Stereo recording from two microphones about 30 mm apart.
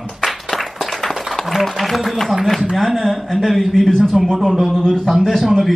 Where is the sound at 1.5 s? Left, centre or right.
Centre.